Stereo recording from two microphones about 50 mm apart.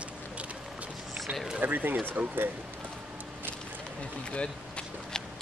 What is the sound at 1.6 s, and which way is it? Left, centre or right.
Speech, right.